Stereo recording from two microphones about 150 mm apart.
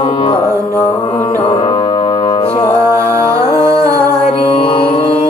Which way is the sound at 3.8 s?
35° left (ahead or behind).